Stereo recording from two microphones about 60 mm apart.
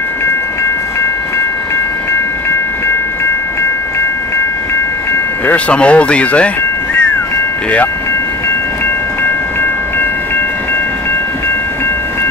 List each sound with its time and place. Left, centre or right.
5.5 s speech: centre